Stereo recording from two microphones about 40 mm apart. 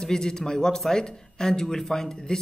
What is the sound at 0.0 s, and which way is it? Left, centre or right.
A man's voice, centre.